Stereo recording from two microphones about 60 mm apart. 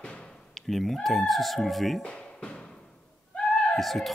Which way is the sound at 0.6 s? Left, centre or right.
Centre.